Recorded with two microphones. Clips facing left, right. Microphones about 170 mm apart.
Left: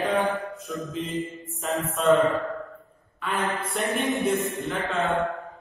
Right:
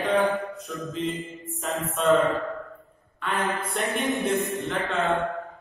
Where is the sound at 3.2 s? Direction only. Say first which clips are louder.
Even; centre (ahead or behind).